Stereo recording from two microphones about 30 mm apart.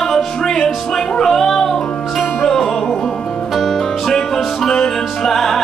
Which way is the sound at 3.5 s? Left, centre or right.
Centre.